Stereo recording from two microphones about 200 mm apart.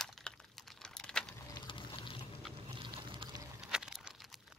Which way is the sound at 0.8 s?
5° left (ahead or behind).